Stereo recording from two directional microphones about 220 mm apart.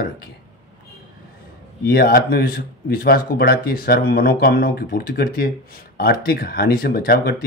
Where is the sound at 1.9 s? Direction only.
45° left (ahead or behind).